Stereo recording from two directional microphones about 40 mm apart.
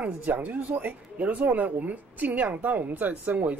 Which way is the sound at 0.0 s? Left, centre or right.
Right.